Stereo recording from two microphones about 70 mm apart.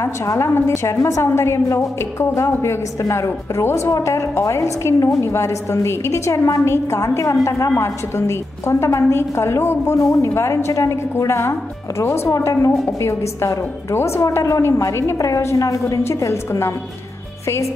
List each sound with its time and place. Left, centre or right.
0.0 s a woman's voice: left
16.1 s a woman's voice: left